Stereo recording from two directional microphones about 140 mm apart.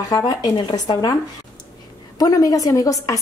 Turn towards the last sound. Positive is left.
turn(degrees=25)  # may be behind; listen again after turning